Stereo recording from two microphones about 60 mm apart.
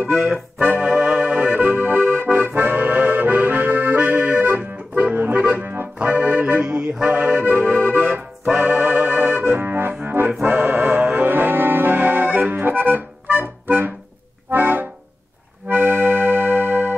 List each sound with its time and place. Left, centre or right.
0.1 s music: right
2.3 s accordion: right
5.9 s music: right
7.1 s accordion: right
10.4 s music: right
14.5 s accordion: right